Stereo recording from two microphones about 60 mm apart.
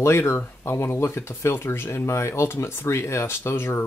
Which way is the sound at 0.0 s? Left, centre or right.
Left.